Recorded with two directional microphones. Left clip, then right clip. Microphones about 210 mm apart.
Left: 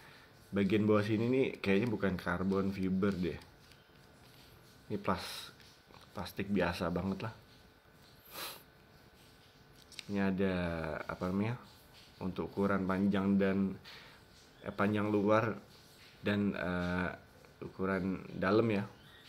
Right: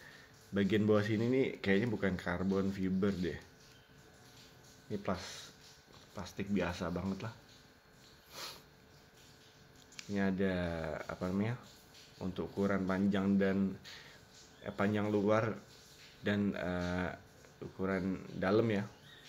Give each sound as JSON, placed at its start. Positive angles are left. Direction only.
{"t": 0.6, "sound": "speech", "side_deg": 10}
{"t": 4.8, "sound": "speech", "side_deg": 20}
{"t": 8.3, "sound": "snort", "side_deg": 20}
{"t": 9.9, "sound": "speech", "side_deg": 10}